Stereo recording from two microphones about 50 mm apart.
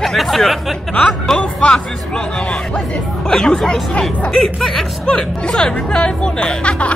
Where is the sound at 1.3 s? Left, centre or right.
Left.